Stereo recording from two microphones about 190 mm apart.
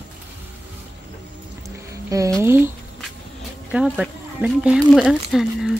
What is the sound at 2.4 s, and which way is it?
Speech, 15° right (ahead or behind).